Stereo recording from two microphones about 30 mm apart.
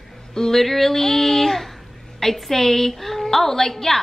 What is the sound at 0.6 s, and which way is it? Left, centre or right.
A woman's voice, centre.